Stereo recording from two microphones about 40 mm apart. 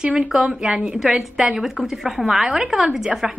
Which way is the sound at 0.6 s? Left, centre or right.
Right.